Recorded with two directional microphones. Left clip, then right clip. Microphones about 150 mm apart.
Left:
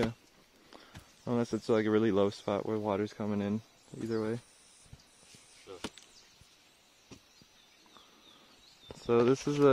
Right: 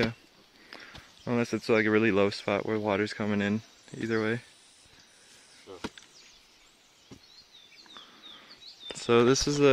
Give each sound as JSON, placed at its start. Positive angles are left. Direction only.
{"t": 0.7, "sound": "speech", "side_deg": 10}
{"t": 5.7, "sound": "chop", "side_deg": -30}
{"t": 9.0, "sound": "speech", "side_deg": 0}